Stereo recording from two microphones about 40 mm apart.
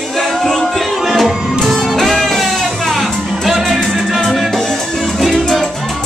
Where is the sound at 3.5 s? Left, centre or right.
Centre.